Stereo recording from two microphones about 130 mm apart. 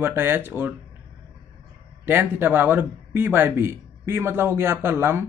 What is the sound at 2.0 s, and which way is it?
Speech, 15° right (ahead or behind).